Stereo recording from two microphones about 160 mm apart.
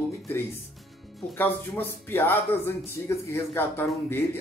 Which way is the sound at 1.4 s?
10° left (ahead or behind).